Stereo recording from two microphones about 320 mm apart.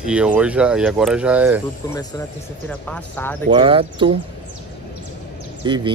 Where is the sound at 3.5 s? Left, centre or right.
Centre.